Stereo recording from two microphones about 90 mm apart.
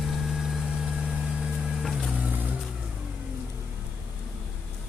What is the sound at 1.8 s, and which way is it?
Vehicle, centre (ahead or behind).